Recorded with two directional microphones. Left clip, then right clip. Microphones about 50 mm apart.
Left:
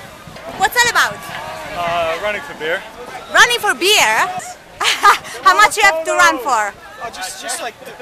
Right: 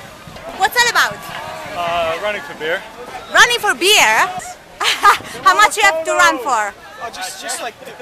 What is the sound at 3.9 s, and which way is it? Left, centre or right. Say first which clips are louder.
Speech: right 2 dB; centre.